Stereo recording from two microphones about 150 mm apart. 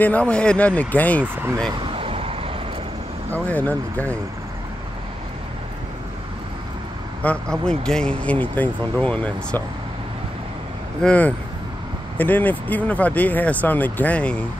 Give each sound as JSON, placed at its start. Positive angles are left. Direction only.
{"t": 0.0, "sound": "speech", "side_deg": 10}
{"t": 1.2, "sound": "speech", "side_deg": -15}
{"t": 1.7, "sound": "vehicle", "side_deg": -35}
{"t": 3.4, "sound": "speech", "side_deg": 10}
{"t": 7.2, "sound": "speech", "side_deg": 5}
{"t": 11.0, "sound": "speech", "side_deg": 10}